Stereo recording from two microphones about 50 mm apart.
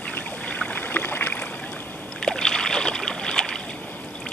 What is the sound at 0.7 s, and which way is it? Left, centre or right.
Boat, left.